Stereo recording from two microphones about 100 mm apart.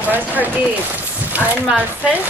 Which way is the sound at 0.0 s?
15° right (ahead or behind).